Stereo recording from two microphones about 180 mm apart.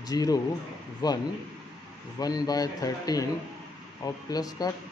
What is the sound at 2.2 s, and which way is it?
Speech, 20° left (ahead or behind).